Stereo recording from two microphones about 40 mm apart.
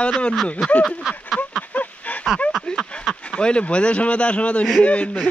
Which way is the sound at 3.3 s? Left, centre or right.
Left.